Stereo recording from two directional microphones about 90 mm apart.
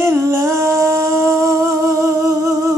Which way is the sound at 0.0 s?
30° right (ahead or behind).